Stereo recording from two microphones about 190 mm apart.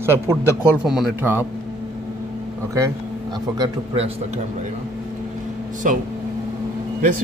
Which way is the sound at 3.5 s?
25° right (ahead or behind).